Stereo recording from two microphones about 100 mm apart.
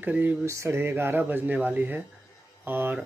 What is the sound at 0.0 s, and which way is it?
Speech, 15° right (ahead or behind).